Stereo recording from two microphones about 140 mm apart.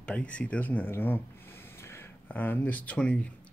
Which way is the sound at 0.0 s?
10° left (ahead or behind).